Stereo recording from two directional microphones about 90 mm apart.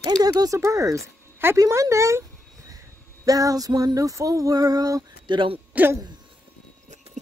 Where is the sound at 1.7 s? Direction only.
35° right (ahead or behind).